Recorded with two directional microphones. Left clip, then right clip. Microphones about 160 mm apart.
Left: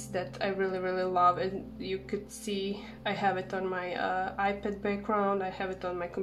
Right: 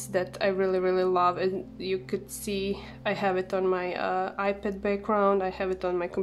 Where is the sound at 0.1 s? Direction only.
40° right (ahead or behind).